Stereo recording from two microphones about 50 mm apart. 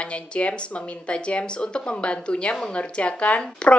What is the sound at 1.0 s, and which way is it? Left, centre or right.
Speech, left.